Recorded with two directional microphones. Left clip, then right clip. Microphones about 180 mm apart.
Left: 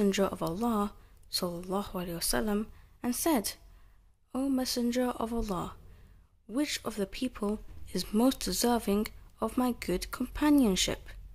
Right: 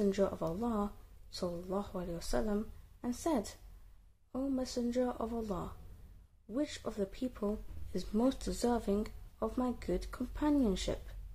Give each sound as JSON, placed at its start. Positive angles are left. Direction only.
{"t": 0.0, "sound": "speech", "side_deg": 15}